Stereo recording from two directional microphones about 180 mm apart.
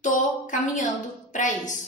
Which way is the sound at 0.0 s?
45° left (ahead or behind).